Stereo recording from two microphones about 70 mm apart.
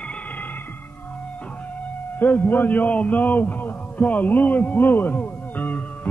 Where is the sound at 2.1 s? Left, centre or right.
Left.